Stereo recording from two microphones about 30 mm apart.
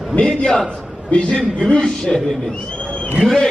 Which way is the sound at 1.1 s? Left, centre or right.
Left.